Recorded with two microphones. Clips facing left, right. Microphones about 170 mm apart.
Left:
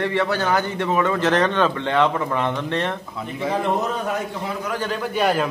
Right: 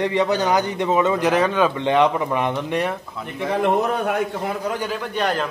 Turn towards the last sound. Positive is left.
turn(degrees=5)  # may be behind; listen again after turning